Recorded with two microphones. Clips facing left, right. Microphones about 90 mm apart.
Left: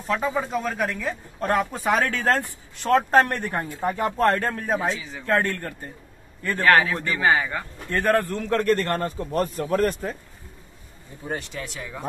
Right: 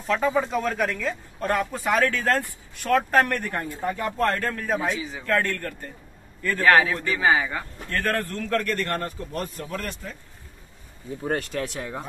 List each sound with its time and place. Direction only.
0.4 s speech: 5° left (ahead or behind)
1.4 s speech: 20° left (ahead or behind)
6.6 s speech: 5° right (ahead or behind)
7.9 s speech: 15° left (ahead or behind)
8.6 s a man's voice: 35° left (ahead or behind)
11.2 s speech: 50° right (ahead or behind)